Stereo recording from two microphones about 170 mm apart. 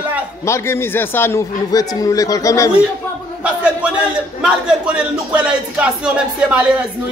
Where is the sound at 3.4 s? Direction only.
5° right (ahead or behind).